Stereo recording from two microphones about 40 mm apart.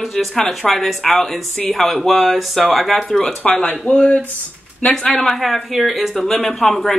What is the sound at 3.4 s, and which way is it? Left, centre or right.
Speech, left.